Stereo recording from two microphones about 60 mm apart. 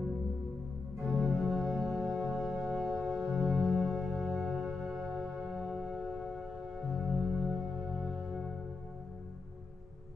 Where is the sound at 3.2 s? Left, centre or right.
Centre.